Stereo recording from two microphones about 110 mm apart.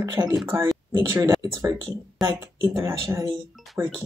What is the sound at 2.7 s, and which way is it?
Speech, 25° right (ahead or behind).